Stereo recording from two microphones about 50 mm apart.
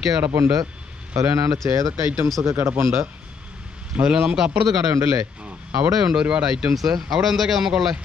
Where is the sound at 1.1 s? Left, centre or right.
Right.